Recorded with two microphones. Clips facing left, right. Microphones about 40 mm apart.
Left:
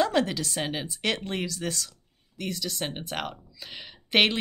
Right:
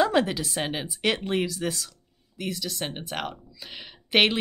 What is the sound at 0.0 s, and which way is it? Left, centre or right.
Speech, centre.